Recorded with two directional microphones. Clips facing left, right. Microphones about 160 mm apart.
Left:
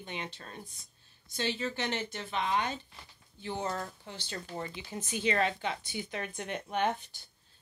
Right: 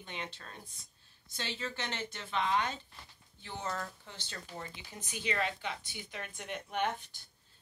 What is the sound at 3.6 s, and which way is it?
Speech, 30° left (ahead or behind).